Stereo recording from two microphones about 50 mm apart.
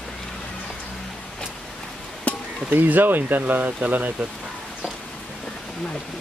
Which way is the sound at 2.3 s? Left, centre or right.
Left.